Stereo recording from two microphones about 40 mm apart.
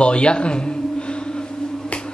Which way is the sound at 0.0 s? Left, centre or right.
Left.